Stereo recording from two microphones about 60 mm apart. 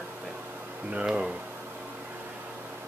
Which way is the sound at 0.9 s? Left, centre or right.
Centre.